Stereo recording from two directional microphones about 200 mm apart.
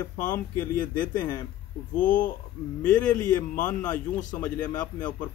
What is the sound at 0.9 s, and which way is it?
Speech, 20° left (ahead or behind).